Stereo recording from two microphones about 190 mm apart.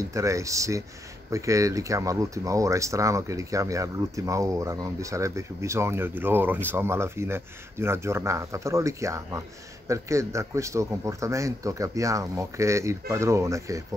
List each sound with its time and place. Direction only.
0.0 s speech: 15° right (ahead or behind)